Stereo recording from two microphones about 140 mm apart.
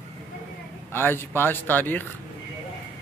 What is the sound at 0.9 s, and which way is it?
A man's voice, 15° left (ahead or behind).